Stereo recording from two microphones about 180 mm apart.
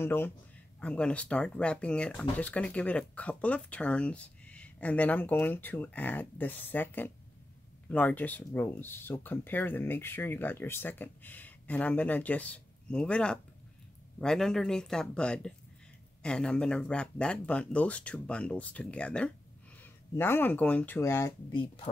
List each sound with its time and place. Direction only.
0.0 s speech: 10° left (ahead or behind)
21.5 s speech: 25° left (ahead or behind)